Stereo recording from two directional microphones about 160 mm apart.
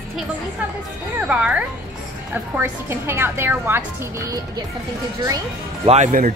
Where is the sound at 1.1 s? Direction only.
5° right (ahead or behind).